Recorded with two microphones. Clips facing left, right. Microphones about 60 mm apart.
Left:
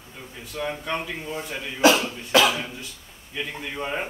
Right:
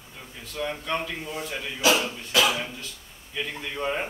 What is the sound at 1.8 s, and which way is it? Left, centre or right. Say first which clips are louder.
Speech: left 5 dB; left.